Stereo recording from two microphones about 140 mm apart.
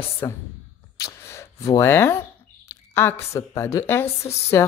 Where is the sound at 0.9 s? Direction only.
20° left (ahead or behind).